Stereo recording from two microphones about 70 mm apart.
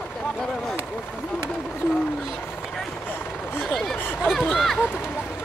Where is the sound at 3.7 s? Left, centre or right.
Centre.